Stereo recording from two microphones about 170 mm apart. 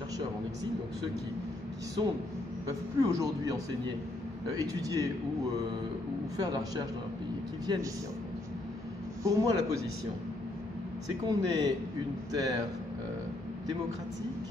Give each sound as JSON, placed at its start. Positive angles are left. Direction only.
{"t": 3.0, "sound": "a man's voice", "side_deg": -20}
{"t": 6.3, "sound": "a man's voice", "side_deg": -20}
{"t": 9.2, "sound": "a man's voice", "side_deg": -20}
{"t": 11.2, "sound": "a man's voice", "side_deg": -25}